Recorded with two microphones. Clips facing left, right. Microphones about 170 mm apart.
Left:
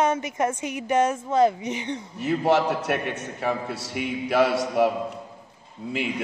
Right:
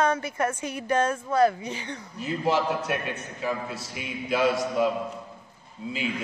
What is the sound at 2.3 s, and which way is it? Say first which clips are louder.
A man's voice: left 4 dB; 75° left (ahead or behind).